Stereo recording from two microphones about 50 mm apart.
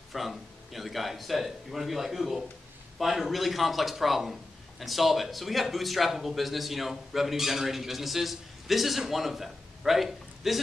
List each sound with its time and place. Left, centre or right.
0.1 s a man's voice: centre